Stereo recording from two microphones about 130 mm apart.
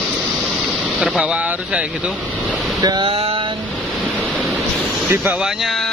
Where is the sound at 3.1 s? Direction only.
45° right (ahead or behind).